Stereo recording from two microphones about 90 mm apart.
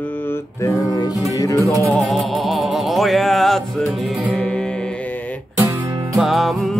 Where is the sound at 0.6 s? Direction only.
35° left (ahead or behind).